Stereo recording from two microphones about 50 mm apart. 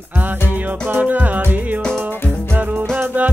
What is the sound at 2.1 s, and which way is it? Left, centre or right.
Music, left.